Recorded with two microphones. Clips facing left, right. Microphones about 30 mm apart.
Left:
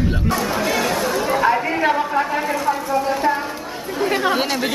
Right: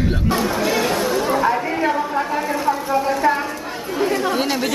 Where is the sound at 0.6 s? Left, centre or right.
Centre.